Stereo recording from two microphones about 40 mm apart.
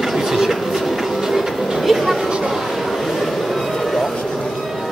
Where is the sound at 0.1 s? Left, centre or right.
Centre.